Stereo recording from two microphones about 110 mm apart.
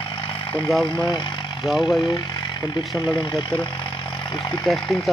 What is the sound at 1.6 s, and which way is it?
Speech, 5° right (ahead or behind).